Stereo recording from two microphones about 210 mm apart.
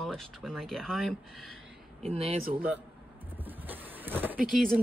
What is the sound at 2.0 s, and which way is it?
Speech, 30° right (ahead or behind).